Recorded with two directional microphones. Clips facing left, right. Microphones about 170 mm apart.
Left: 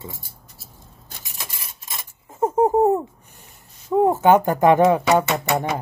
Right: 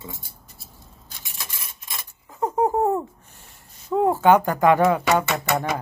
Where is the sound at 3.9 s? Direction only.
20° left (ahead or behind).